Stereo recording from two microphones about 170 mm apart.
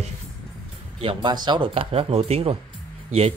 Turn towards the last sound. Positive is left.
turn(degrees=-35)  # may be behind; listen again after turning